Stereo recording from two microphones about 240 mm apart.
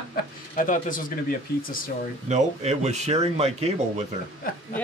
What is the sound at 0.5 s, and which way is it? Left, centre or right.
Speech, left.